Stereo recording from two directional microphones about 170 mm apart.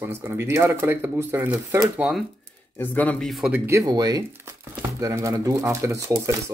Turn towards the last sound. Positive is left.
turn(degrees=-20)  # may be behind; listen again after turning